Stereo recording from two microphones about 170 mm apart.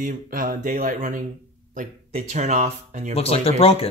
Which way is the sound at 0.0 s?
55° right (ahead or behind).